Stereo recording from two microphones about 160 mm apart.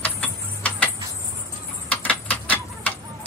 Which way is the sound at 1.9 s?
10° left (ahead or behind).